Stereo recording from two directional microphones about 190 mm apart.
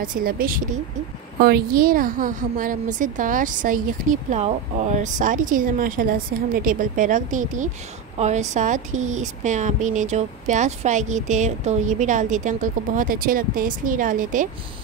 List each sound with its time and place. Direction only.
0.0 s a woman's voice: 45° right (ahead or behind)